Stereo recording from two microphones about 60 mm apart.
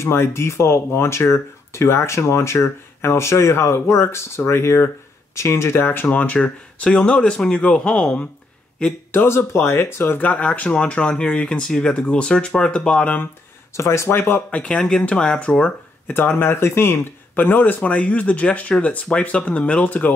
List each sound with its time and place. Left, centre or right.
0.0 s speech: left
6.0 s speech: left
9.1 s speech: left
10.2 s speech: left
13.7 s speech: left
14.5 s speech: centre
16.1 s speech: left